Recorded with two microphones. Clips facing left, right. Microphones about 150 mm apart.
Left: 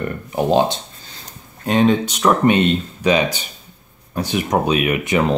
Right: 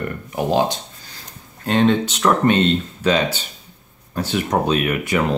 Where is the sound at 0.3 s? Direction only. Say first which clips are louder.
Left 3 dB; 25° left (ahead or behind).